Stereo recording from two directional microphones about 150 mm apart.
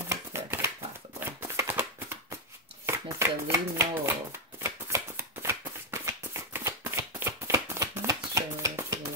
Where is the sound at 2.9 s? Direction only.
15° right (ahead or behind).